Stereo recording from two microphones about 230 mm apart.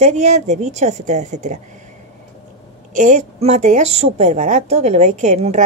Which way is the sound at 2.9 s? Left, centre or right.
Right.